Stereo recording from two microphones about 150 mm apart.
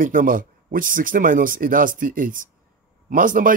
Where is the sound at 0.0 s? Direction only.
65° right (ahead or behind).